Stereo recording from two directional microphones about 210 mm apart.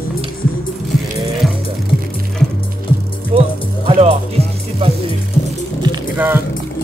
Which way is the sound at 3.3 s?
30° right (ahead or behind).